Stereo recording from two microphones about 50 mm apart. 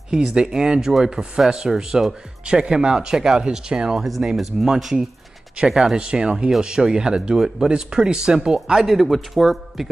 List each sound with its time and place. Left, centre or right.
0.1 s speech: centre
8.8 s a man's voice: centre